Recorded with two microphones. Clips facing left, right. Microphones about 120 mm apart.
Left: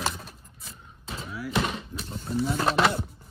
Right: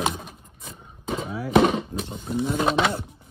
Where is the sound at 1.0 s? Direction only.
55° right (ahead or behind).